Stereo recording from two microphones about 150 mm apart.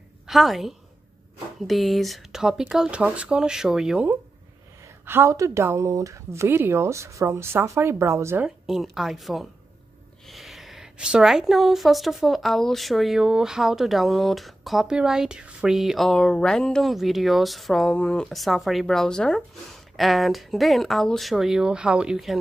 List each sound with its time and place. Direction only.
0.3 s a woman's voice: centre (ahead or behind); by 8.5 s 15° right (ahead or behind)
8.5 s a woman's voice: 5° right (ahead or behind)